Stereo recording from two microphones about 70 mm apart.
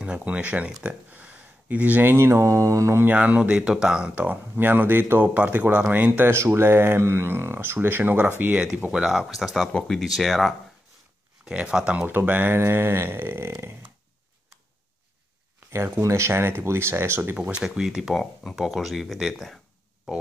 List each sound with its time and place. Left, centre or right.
0.0 s speech: centre
0.7 s speech: centre
1.1 s speech: right
3.2 s speech: centre
4.6 s speech: right
6.3 s speech: right
8.9 s speech: centre
11.4 s speech: centre
12.1 s speech: right
15.7 s speech: right
17.4 s speech: centre